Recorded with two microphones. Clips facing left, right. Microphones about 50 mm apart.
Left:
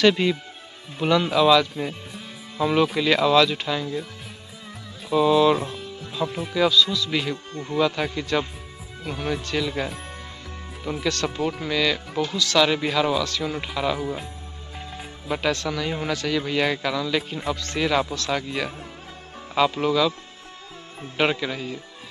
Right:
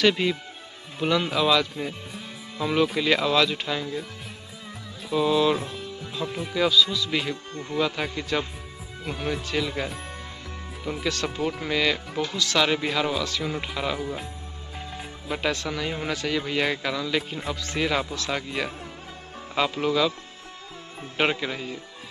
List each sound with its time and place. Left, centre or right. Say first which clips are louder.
0.0 s speech: left 3 dB; centre
2.5 s speech: left 3 dB; centre
5.1 s speech: left 4 dB; centre
9.4 s speech: left 1 dB; centre
10.9 s speech: left 2 dB; centre
11.2 s speech: left 2 dB; centre
11.6 s speech: even; centre
12.1 s speech: left 3 dB; centre
12.5 s speech: left 3 dB; centre
14.8 s music: even; centre
15.4 s speech: left 2 dB; centre
21.2 s speech: left 2 dB; centre